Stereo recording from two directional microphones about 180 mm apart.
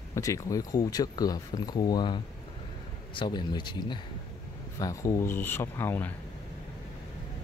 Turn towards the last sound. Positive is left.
turn(degrees=10)  # may be behind; listen again after turning